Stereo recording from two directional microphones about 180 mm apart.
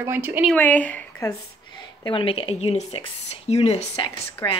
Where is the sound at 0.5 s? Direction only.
10° left (ahead or behind).